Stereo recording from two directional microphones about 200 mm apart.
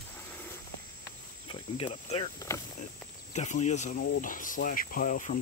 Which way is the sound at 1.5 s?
30° left (ahead or behind).